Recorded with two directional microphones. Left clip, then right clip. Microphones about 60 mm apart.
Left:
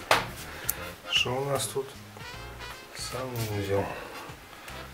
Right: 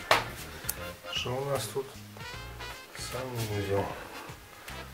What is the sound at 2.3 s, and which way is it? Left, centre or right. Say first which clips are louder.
Music: even; centre.